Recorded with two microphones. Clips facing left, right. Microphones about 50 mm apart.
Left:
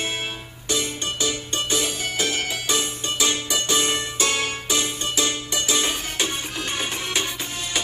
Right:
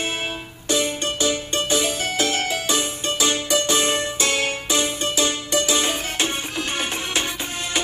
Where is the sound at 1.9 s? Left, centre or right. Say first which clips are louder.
Right 3 dB; right.